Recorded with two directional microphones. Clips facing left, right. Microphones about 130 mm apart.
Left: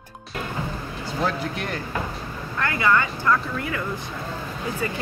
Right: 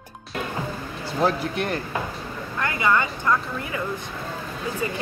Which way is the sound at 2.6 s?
20° right (ahead or behind).